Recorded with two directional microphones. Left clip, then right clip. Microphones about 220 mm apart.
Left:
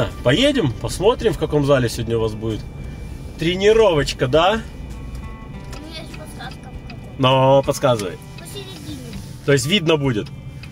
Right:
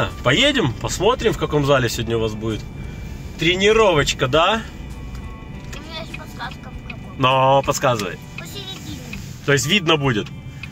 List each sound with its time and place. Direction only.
0.0 s speech: 10° left (ahead or behind)
7.2 s speech: 10° left (ahead or behind)
9.5 s speech: 20° left (ahead or behind)